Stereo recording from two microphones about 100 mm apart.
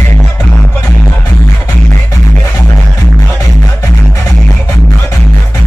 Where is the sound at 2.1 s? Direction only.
35° left (ahead or behind).